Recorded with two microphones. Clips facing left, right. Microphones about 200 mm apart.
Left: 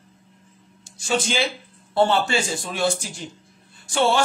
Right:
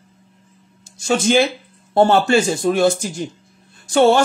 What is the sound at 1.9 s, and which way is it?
Speech, 40° right (ahead or behind).